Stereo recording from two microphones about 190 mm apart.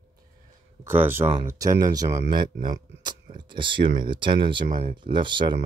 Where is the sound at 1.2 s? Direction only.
30° right (ahead or behind).